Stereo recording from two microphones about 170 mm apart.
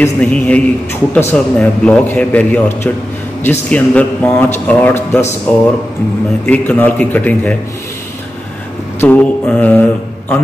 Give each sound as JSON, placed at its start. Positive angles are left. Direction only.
{"t": 0.0, "sound": "speech", "side_deg": 10}
{"t": 9.0, "sound": "speech", "side_deg": 10}